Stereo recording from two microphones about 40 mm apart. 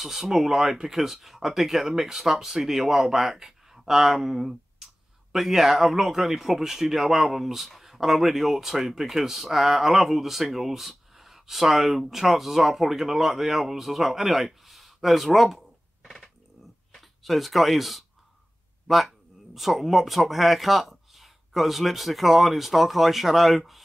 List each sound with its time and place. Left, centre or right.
0.0 s speech: centre
16.9 s speech: centre